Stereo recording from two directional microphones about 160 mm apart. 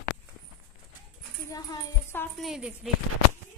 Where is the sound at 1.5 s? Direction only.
20° left (ahead or behind).